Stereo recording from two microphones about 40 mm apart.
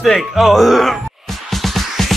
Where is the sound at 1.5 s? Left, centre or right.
Centre.